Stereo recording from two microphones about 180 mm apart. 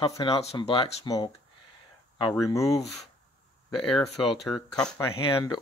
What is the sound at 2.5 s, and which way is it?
Speech, 20° left (ahead or behind).